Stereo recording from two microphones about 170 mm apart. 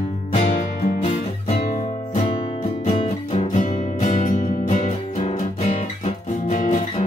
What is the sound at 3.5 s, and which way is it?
Music, 50° left (ahead or behind).